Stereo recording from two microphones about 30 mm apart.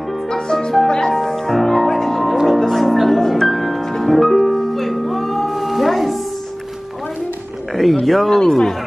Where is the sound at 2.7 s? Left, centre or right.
Centre.